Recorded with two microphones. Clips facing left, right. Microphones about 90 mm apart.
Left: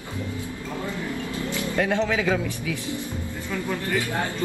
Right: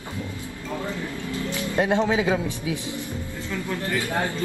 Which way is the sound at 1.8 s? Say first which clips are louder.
Right 2 dB; 20° right (ahead or behind).